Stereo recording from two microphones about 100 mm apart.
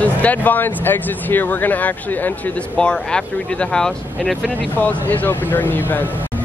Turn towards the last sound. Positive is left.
turn(degrees=20)  # may be behind; listen again after turning